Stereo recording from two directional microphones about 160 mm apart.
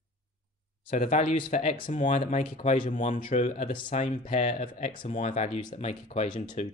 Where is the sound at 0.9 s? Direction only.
50° left (ahead or behind).